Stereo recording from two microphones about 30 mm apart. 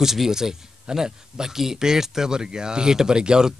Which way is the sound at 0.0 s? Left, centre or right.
Centre.